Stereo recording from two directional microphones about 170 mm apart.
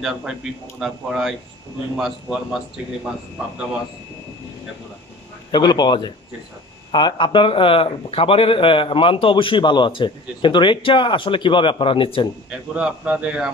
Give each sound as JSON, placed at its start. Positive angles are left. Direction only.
{"t": 0.0, "sound": "speech", "side_deg": -5}
{"t": 5.5, "sound": "speech", "side_deg": 25}
{"t": 12.4, "sound": "a man's voice", "side_deg": -5}